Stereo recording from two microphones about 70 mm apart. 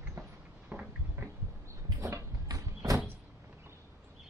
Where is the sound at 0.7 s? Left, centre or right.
Right.